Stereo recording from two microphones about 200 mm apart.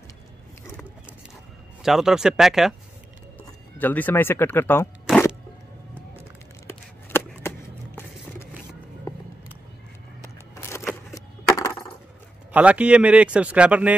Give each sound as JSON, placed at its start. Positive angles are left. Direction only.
{"t": 1.8, "sound": "a man's voice", "side_deg": 0}
{"t": 3.7, "sound": "speech", "side_deg": 10}
{"t": 5.1, "sound": "crack", "side_deg": 0}
{"t": 6.7, "sound": "a sound", "side_deg": 10}
{"t": 10.5, "sound": "a sound", "side_deg": 15}
{"t": 12.5, "sound": "a man's voice", "side_deg": -5}